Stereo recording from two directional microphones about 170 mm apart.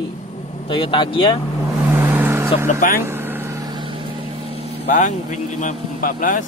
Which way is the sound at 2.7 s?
50° left (ahead or behind).